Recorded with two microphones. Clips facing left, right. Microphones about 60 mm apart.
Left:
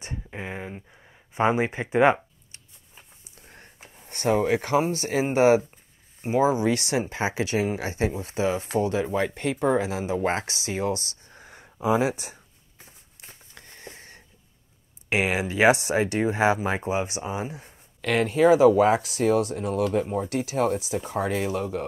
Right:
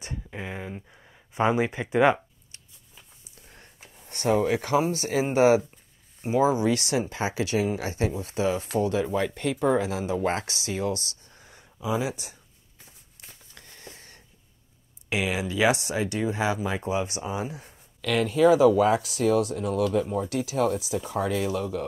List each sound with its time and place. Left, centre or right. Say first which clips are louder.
0.0 s a sound: left 1 dB; left
1.3 s speech: left 1 dB; left
3.0 s a sound: left 2 dB; left
5.3 s speech: left 1 dB; left
6.2 s speech: left 1 dB; left
16.8 s speech: left 1 dB; left
17.5 s speech: even; centre
18.0 s speech: left 1 dB; left